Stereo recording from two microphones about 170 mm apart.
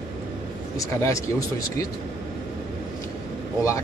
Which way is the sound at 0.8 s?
20° left (ahead or behind).